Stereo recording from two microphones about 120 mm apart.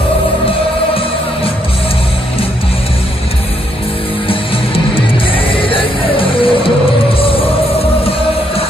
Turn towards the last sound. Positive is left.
turn(degrees=50)  # may be behind; listen again after turning